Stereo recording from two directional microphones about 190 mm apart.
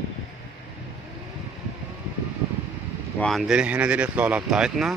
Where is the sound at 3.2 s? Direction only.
Centre (ahead or behind).